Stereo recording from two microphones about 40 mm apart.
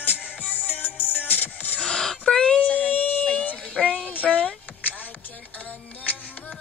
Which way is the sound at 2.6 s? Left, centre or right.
Left.